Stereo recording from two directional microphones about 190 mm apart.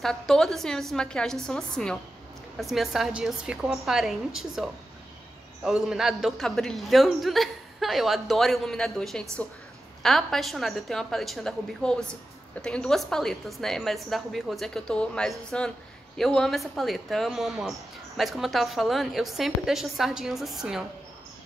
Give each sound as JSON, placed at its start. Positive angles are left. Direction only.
{"t": 0.0, "sound": "speech", "side_deg": 0}